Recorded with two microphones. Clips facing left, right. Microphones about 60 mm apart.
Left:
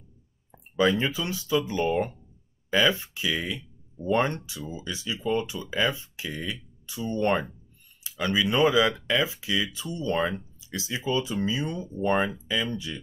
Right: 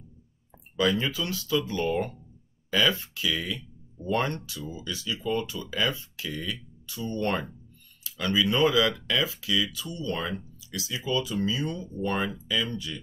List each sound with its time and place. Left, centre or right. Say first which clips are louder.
0.7 s speech: left 2 dB; left